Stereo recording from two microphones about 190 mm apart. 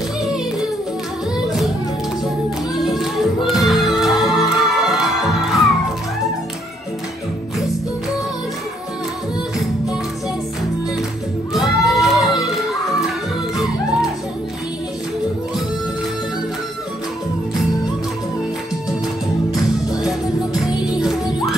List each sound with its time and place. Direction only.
0.2 s music: centre (ahead or behind)
2.7 s music: centre (ahead or behind)
11.5 s music: centre (ahead or behind)
20.5 s music: centre (ahead or behind)